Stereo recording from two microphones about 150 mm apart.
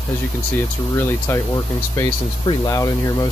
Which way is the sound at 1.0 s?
15° left (ahead or behind).